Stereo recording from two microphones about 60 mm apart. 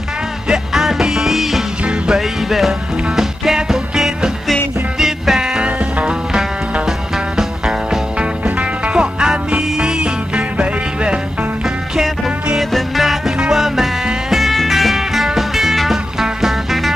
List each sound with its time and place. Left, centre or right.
0.5 s music: centre
8.5 s music: right
12.5 s music: centre